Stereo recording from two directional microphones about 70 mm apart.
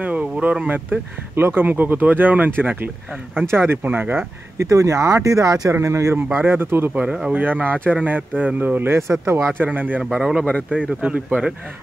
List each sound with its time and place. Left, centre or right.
0.0 s speech: right
4.6 s speech: right
5.7 s speech: right
6.3 s speech: right
9.6 s speech: right
10.0 s speech: centre
10.7 s speech: centre